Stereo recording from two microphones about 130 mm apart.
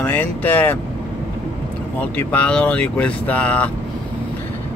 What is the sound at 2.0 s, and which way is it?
Speech, 10° left (ahead or behind).